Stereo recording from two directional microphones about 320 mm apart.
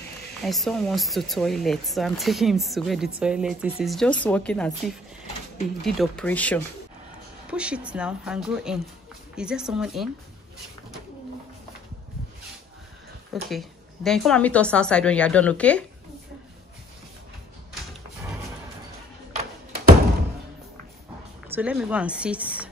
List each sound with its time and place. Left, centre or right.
0.4 s speech: centre
13.3 s speech: centre
19.3 s music: right
21.5 s speech: centre